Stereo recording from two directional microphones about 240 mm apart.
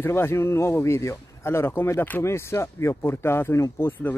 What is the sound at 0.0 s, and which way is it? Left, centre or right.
Speech, centre.